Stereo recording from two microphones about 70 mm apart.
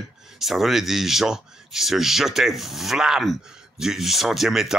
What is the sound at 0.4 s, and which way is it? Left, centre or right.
Speech, centre.